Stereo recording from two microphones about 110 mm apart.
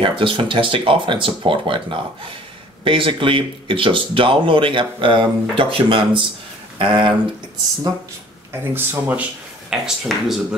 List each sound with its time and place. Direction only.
0.0 s speech: 50° right (ahead or behind)
8.7 s speech: 15° right (ahead or behind)
9.7 s speech: 5° right (ahead or behind)